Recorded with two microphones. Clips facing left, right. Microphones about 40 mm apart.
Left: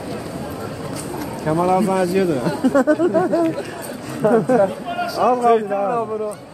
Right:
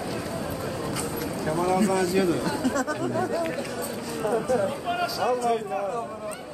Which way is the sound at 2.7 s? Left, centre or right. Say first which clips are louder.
Left 12 dB; left.